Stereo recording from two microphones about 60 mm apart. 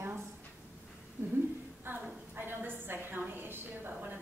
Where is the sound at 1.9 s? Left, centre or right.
Right.